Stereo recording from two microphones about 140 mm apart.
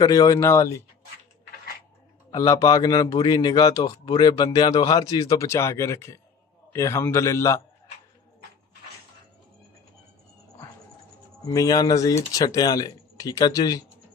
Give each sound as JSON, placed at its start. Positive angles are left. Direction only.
{"t": 0.0, "sound": "a man's voice", "side_deg": 25}
{"t": 2.3, "sound": "a man's voice", "side_deg": 25}
{"t": 11.4, "sound": "a man's voice", "side_deg": 25}